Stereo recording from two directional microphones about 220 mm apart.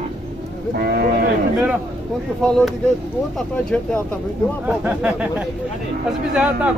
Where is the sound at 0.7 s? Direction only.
45° right (ahead or behind).